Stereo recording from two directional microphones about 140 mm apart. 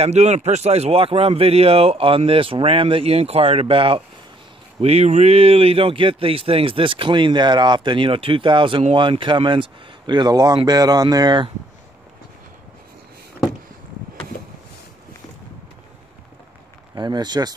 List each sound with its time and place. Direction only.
0.0 s speech: 50° right (ahead or behind); by 11.5 s 35° right (ahead or behind)
16.9 s speech: 30° right (ahead or behind)